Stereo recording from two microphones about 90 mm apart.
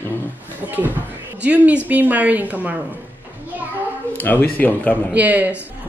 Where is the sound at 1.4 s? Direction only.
15° right (ahead or behind).